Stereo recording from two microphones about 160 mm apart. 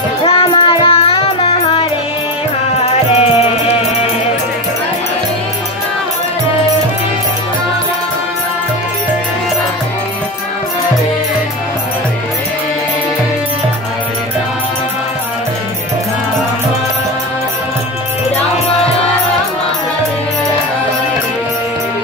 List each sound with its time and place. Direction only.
0.2 s music: 35° left (ahead or behind)
2.7 s music: 40° left (ahead or behind)